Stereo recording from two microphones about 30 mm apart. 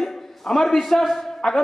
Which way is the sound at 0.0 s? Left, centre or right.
Centre.